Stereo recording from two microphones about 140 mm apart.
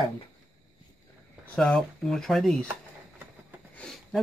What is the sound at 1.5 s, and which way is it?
Speech, 5° left (ahead or behind).